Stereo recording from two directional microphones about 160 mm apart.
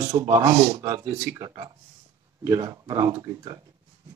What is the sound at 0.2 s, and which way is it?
A man's voice, 15° right (ahead or behind).